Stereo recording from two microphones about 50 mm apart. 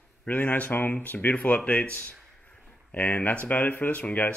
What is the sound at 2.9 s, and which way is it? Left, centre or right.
Speech, left.